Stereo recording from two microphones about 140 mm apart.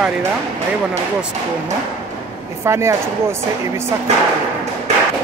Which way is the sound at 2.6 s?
20° right (ahead or behind).